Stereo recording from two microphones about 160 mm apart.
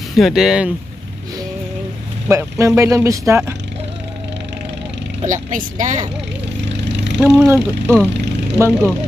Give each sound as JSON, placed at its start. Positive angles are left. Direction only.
{"t": 0.1, "sound": "speech", "side_deg": -5}
{"t": 2.2, "sound": "speech", "side_deg": -15}
{"t": 5.2, "sound": "speech", "side_deg": -55}
{"t": 7.3, "sound": "speech", "side_deg": -15}